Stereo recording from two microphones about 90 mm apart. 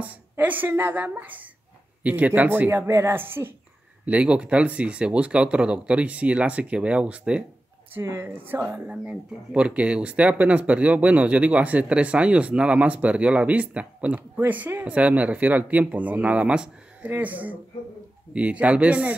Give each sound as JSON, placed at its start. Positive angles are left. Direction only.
{"t": 0.0, "sound": "speech", "side_deg": -15}
{"t": 4.0, "sound": "speech", "side_deg": -15}
{"t": 7.9, "sound": "speech", "side_deg": -25}
{"t": 8.9, "sound": "speech", "side_deg": -15}